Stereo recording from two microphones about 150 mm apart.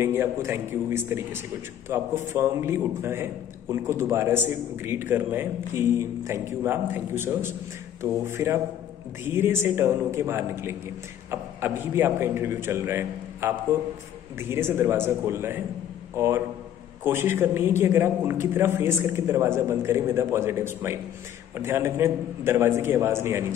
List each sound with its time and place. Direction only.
0.0 s a man's voice: 15° right (ahead or behind)